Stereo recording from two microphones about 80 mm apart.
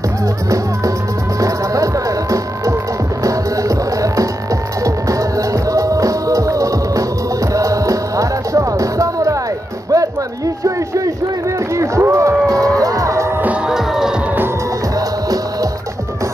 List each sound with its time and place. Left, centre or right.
3.3 s music: right
5.5 s music: right
9.8 s a sound: right
11.7 s a sound: right
12.0 s music: right
13.7 s music: centre
15.0 s music: right